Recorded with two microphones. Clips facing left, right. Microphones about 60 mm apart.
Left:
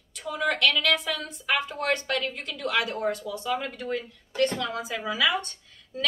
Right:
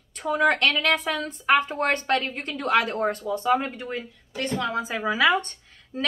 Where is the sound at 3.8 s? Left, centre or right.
Right.